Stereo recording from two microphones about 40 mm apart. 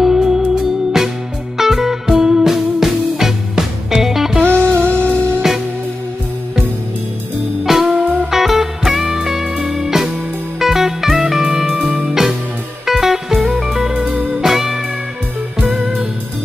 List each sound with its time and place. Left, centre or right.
0.0 s music: centre
4.5 s music: left
7.6 s music: centre
9.1 s music: centre
12.0 s music: centre